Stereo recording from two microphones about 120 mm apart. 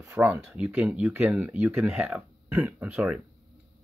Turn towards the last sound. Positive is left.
turn(degrees=-10)  # may be behind; listen again after turning